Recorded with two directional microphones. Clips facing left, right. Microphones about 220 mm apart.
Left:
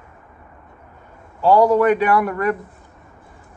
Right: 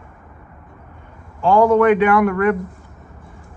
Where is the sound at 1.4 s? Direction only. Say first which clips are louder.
Right 1 dB; 40° left (ahead or behind).